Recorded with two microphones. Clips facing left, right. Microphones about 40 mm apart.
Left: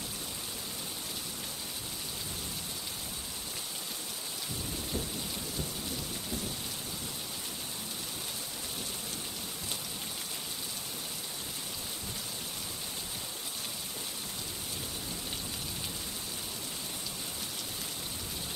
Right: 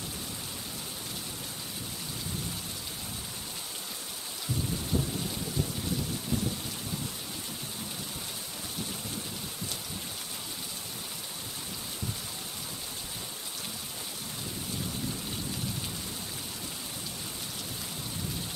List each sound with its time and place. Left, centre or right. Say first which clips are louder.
4.9 s rain: right 7 dB; right